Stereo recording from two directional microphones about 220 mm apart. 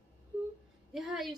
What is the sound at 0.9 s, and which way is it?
Speech, centre (ahead or behind).